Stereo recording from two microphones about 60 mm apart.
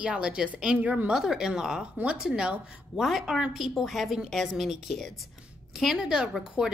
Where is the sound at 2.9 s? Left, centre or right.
Centre.